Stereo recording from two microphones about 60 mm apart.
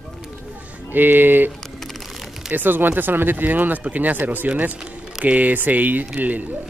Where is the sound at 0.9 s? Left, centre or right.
Right.